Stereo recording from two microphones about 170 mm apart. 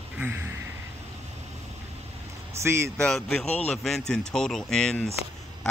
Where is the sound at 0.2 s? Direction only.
15° right (ahead or behind).